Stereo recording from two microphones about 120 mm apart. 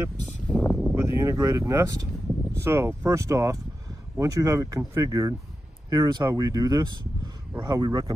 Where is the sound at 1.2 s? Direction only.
25° right (ahead or behind).